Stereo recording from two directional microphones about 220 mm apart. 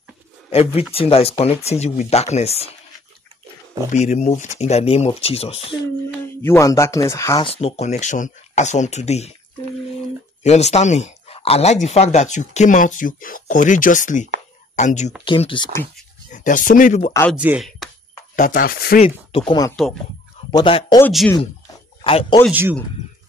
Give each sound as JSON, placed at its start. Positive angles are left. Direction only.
{"t": 0.5, "sound": "speech", "side_deg": 25}
{"t": 3.9, "sound": "speech", "side_deg": 30}
{"t": 6.2, "sound": "speech", "side_deg": 10}
{"t": 7.5, "sound": "speech", "side_deg": 30}
{"t": 10.4, "sound": "speech", "side_deg": 30}
{"t": 15.2, "sound": "speech", "side_deg": 25}
{"t": 16.3, "sound": "speech", "side_deg": 35}
{"t": 17.1, "sound": "speech", "side_deg": 10}
{"t": 17.4, "sound": "speech", "side_deg": -5}
{"t": 18.3, "sound": "speech", "side_deg": 40}
{"t": 19.0, "sound": "speech", "side_deg": 25}
{"t": 21.1, "sound": "speech", "side_deg": 0}
{"t": 22.0, "sound": "speech", "side_deg": 25}
{"t": 22.5, "sound": "speech", "side_deg": -10}